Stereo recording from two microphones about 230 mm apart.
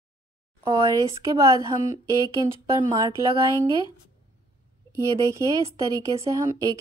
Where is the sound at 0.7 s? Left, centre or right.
Centre.